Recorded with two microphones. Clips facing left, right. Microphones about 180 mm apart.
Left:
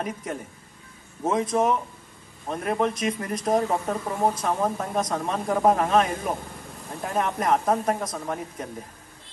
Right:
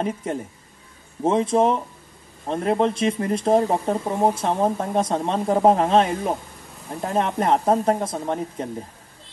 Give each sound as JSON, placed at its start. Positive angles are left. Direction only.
{"t": 0.0, "sound": "speech", "side_deg": -30}